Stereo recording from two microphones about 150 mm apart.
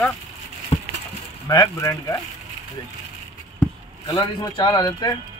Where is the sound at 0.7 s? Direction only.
45° left (ahead or behind).